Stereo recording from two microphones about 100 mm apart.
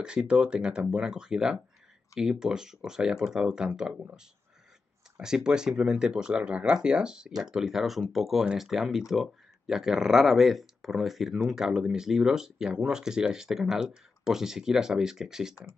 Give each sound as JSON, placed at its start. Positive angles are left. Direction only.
{"t": 0.0, "sound": "speech", "side_deg": -10}
{"t": 5.2, "sound": "speech", "side_deg": -5}